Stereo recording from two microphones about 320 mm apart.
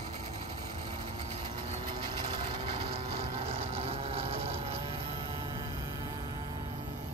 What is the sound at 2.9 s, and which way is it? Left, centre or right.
Vehicle, centre.